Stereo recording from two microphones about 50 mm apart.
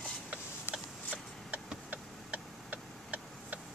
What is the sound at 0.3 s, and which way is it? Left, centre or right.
Mechanisms, right.